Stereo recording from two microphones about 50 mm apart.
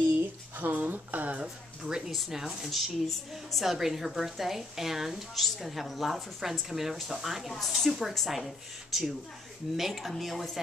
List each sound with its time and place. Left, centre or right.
0.2 s a sound: right
1.8 s speech: centre
2.0 s a woman's voice: centre